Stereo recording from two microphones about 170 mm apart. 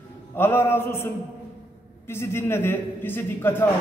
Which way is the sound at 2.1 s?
15° left (ahead or behind).